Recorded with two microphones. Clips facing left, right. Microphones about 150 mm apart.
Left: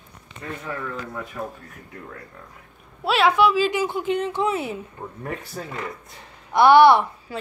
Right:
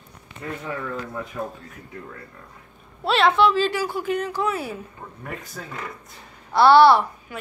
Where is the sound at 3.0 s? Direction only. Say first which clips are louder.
Even; 10° left (ahead or behind).